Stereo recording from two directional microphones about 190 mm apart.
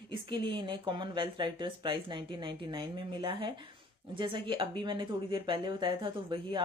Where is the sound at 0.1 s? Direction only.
25° right (ahead or behind).